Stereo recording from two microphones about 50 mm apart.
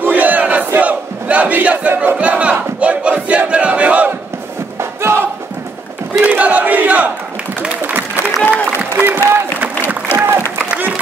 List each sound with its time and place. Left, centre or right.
0.0 s crowd: right
2.1 s battle cry: right
5.0 s a sound: right
6.2 s crowd: right
7.8 s applause: right
8.9 s a sound: right